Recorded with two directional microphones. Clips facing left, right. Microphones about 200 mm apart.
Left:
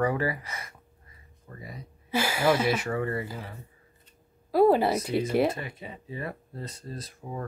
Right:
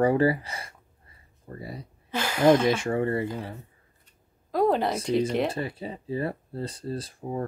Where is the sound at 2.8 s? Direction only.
30° right (ahead or behind).